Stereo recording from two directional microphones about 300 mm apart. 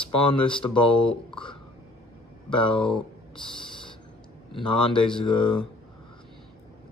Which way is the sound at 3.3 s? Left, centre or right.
Centre.